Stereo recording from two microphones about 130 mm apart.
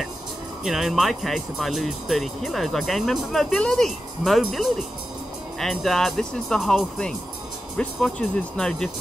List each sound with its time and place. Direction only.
0.7 s speech: 5° right (ahead or behind)